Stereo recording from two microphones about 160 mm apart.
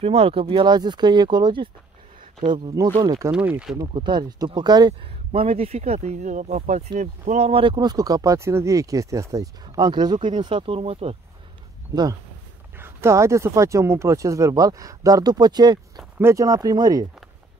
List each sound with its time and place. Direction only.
0.0 s speech: 40° right (ahead or behind); by 3.3 s 25° right (ahead or behind)
3.3 s speech: 10° right (ahead or behind)
3.8 s speech: 30° right (ahead or behind)
11.9 s speech: 25° right (ahead or behind)
12.7 s speech: 15° right (ahead or behind)